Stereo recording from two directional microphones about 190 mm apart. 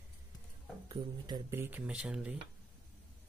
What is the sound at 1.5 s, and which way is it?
Speech, 10° right (ahead or behind).